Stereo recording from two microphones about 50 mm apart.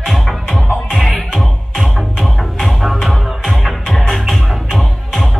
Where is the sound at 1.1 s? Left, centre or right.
Centre.